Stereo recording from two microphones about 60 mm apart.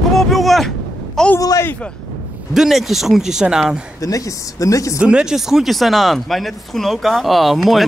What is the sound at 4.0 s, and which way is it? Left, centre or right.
Speech, left.